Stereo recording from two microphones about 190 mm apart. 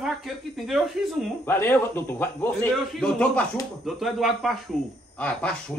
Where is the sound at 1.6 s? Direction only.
10° left (ahead or behind).